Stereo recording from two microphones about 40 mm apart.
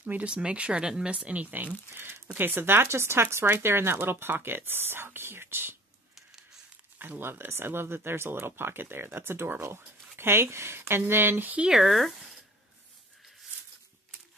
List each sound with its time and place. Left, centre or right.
0.0 s speech: right
0.3 s speech: right
0.8 s speech: centre
1.1 s speech: right
2.3 s speech: right
7.0 s speech: right
11.7 s speech: centre